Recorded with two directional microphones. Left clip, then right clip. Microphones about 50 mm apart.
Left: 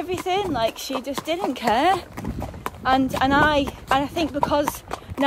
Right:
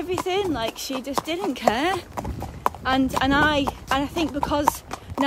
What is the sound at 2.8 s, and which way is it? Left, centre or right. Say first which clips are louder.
Speech: left 4 dB; right.